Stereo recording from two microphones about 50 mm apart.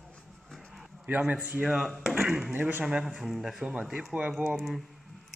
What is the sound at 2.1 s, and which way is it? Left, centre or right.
Speech, centre.